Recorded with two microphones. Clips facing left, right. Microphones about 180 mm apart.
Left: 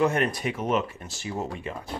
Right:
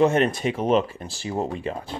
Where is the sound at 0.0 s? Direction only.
25° right (ahead or behind).